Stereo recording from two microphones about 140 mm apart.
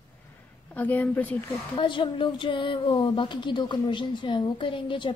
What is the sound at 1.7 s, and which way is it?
Speech, 35° left (ahead or behind).